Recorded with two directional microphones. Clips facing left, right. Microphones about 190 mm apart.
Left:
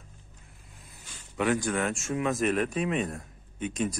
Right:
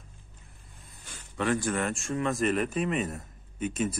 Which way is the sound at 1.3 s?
5° left (ahead or behind).